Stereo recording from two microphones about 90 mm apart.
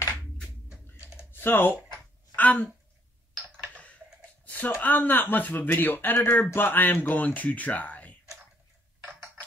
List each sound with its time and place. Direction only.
0.7 s typing: 15° right (ahead or behind)
1.3 s speech: 25° left (ahead or behind)
1.9 s a sound: 15° left (ahead or behind)
4.5 s speech: 20° left (ahead or behind)